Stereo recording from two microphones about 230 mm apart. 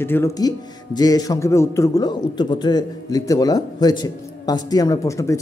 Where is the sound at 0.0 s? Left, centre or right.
Centre.